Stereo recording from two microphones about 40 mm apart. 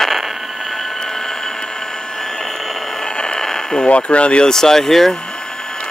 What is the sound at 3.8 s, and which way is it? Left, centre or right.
Speech, left.